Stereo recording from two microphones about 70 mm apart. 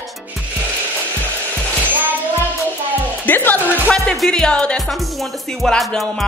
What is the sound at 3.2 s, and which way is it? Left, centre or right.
Music, left.